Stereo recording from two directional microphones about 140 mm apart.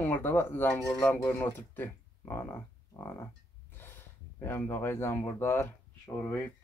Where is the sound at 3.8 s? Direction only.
15° left (ahead or behind).